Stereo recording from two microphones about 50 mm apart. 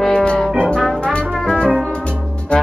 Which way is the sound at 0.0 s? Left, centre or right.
Centre.